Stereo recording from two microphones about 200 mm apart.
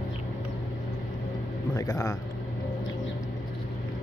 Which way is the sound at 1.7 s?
15° left (ahead or behind).